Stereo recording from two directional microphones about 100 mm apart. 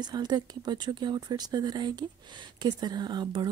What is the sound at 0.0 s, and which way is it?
Speech, 45° right (ahead or behind).